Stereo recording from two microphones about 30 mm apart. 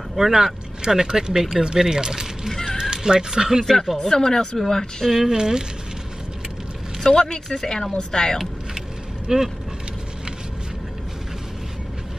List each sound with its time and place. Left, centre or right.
0.2 s speech: right
2.5 s cat: centre
2.8 s speech: right
3.7 s speech: centre
4.0 s speech: centre
5.2 s speech: right
7.0 s speech: left
9.3 s speech: centre